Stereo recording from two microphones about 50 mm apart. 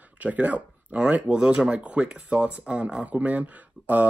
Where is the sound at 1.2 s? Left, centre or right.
Centre.